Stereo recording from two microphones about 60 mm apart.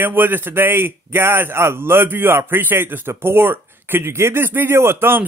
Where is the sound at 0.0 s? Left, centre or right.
Right.